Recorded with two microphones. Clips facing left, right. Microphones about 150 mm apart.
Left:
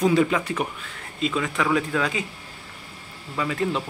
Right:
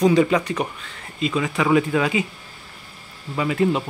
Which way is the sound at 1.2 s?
5° right (ahead or behind).